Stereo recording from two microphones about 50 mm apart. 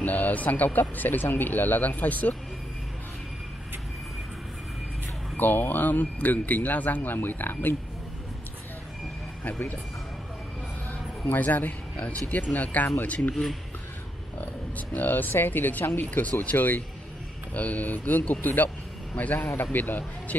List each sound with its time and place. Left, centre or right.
0.0 s speech: left
5.4 s speech: left
9.4 s speech: left
10.9 s speech: left
13.3 s speech: centre
15.0 s speech: left
19.4 s a man's voice: left
19.8 s speech: left